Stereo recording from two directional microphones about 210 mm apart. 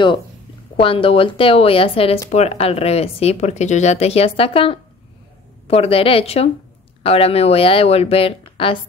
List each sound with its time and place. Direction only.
0.7 s speech: 25° left (ahead or behind)